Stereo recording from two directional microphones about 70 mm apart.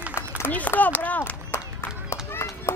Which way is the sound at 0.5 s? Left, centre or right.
Left.